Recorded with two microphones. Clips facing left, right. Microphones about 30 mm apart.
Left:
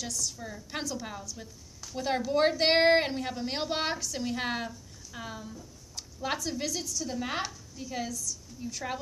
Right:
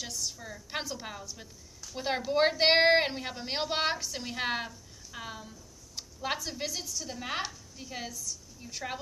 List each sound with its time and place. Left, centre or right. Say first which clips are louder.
0.0 s a woman's voice: left 2 dB; centre
0.4 s a woman's voice: left 1 dB; centre